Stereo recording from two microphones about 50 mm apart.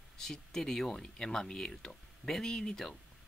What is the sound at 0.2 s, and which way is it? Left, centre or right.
Speech, centre.